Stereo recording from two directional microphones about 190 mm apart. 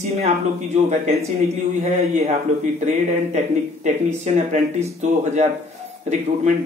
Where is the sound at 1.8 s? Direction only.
35° right (ahead or behind).